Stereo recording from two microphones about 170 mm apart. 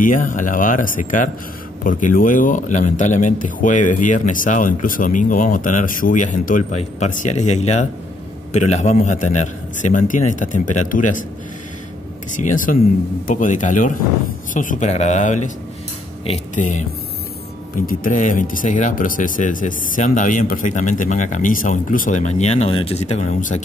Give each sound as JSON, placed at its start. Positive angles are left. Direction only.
{"t": 0.0, "sound": "speech", "side_deg": 50}
{"t": 12.4, "sound": "speech", "side_deg": 50}